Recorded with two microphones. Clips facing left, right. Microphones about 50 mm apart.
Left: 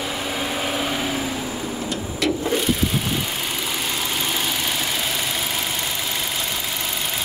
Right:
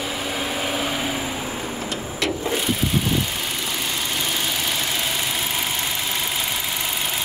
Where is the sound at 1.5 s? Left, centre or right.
Centre.